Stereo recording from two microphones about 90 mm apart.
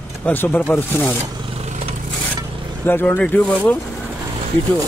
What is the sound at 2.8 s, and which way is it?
Speech, 25° left (ahead or behind).